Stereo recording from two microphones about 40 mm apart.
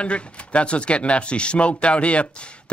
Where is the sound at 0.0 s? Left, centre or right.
Left.